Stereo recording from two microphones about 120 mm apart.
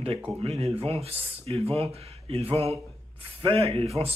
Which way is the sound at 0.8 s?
55° right (ahead or behind).